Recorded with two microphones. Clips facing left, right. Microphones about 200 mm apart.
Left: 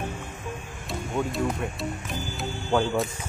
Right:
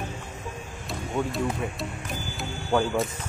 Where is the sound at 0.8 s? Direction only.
Centre (ahead or behind).